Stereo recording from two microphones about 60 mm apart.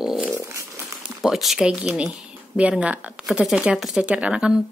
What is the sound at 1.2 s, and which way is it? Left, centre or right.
Speech, centre.